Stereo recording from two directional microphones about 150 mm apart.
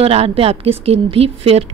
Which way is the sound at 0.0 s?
40° right (ahead or behind).